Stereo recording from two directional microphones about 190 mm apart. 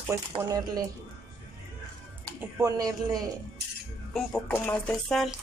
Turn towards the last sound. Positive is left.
turn(degrees=0)  # may be behind; listen again after turning